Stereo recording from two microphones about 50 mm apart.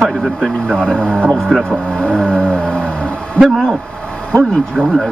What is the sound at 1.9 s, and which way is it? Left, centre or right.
Vehicle, left.